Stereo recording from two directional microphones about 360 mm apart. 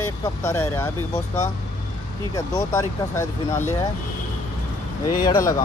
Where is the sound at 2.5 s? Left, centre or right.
Centre.